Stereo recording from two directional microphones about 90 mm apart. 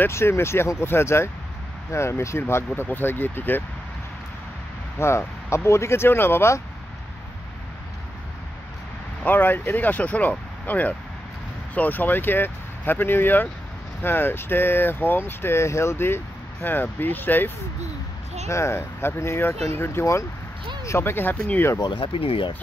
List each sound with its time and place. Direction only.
0.0 s speech: 30° left (ahead or behind)
4.9 s speech: 30° left (ahead or behind)
9.2 s speech: 20° left (ahead or behind)
18.5 s speech: 30° left (ahead or behind)
21.7 s speech: 60° left (ahead or behind); by 22.5 s 90° left